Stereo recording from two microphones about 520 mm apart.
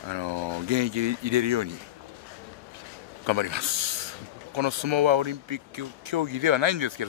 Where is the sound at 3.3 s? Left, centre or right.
Right.